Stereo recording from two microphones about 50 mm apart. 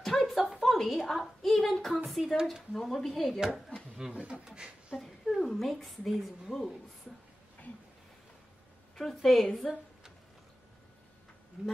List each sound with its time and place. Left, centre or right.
0.3 s a woman's voice: centre
4.1 s speech: right
4.5 s a sound: centre
5.0 s a woman's voice: centre
8.9 s a woman's voice: centre
11.6 s speech: centre